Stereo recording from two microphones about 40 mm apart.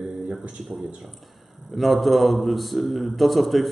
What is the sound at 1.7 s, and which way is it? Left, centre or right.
A man's voice, centre.